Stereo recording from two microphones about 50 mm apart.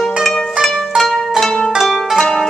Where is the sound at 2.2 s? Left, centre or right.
Centre.